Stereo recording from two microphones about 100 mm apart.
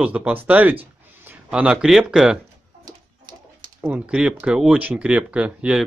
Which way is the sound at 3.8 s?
10° right (ahead or behind).